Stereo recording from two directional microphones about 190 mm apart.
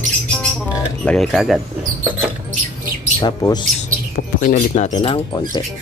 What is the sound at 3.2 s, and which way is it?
Speech, 20° left (ahead or behind).